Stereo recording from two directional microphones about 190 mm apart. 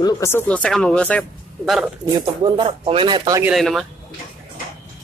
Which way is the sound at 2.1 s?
20° right (ahead or behind).